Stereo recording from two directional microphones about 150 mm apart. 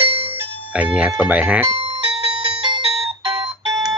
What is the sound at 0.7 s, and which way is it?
Speech, 10° right (ahead or behind).